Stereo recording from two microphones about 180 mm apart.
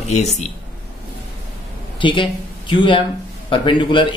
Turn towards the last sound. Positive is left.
turn(degrees=25)  # may be behind; listen again after turning